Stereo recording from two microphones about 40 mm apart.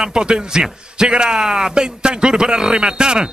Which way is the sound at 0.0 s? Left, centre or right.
Centre.